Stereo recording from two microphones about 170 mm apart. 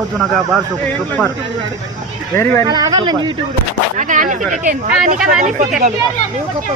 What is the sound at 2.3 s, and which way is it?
Speech, 15° left (ahead or behind).